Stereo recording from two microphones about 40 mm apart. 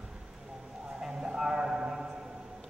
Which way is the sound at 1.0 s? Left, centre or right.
Centre.